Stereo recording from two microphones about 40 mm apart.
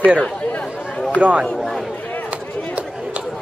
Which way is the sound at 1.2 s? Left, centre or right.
Right.